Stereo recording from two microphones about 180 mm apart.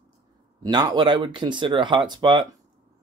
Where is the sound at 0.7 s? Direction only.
25° right (ahead or behind).